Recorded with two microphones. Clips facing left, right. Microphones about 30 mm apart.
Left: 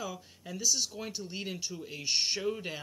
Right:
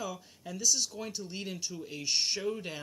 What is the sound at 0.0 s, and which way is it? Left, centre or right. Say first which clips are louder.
Speech: right 1 dB; centre.